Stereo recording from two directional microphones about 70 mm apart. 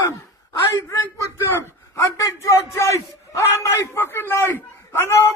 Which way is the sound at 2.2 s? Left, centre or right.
Left.